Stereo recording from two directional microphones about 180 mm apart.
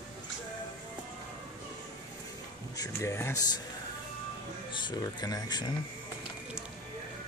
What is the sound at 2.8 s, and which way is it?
Speech, 15° left (ahead or behind).